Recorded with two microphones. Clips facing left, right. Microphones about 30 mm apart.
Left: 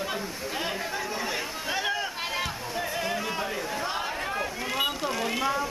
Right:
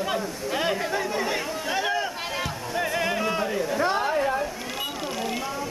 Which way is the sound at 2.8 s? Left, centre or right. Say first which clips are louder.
Right 5 dB; centre.